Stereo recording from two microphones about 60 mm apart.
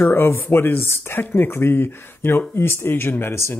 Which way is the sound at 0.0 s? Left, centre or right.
Left.